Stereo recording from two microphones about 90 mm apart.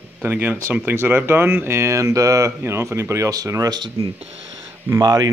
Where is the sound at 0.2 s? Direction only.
20° right (ahead or behind).